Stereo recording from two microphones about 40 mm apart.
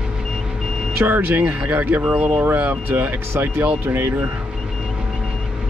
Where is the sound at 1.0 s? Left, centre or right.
Right.